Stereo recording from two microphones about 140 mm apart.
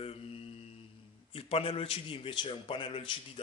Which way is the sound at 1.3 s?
40° left (ahead or behind).